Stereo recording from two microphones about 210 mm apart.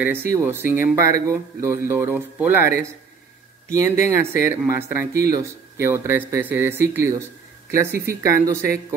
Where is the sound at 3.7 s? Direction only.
15° right (ahead or behind).